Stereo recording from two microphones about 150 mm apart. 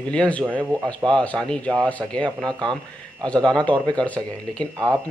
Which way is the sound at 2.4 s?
30° right (ahead or behind).